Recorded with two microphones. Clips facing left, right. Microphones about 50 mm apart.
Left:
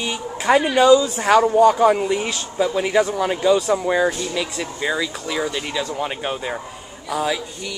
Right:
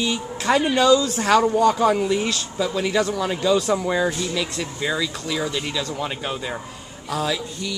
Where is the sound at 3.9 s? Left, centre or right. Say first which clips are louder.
Left 2 dB; centre.